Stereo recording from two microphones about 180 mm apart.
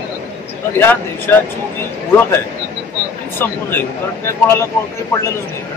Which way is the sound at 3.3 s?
10° left (ahead or behind).